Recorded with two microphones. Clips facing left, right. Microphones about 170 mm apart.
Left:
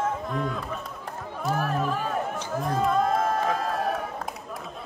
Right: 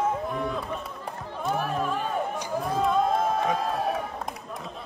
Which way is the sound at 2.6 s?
Centre (ahead or behind).